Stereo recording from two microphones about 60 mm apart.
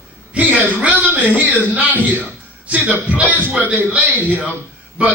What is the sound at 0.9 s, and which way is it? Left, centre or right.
Speech, right.